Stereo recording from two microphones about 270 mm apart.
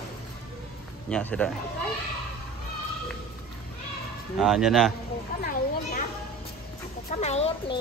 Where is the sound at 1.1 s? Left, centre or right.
Centre.